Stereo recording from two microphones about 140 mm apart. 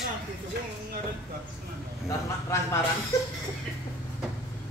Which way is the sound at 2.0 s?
20° left (ahead or behind).